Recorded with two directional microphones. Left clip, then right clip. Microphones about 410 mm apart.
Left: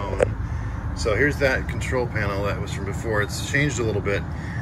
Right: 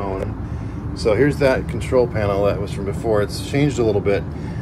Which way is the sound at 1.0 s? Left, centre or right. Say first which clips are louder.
Right 4 dB; centre.